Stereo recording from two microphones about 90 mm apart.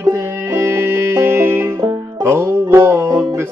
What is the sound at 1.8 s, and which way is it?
Music, 45° right (ahead or behind).